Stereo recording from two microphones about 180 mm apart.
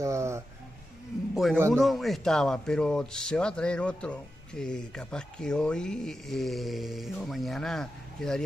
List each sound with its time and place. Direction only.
0.0 s speech: 15° right (ahead or behind)
1.3 s a man's voice: centre (ahead or behind)